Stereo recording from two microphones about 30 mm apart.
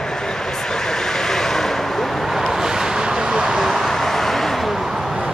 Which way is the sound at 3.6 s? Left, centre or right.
Centre.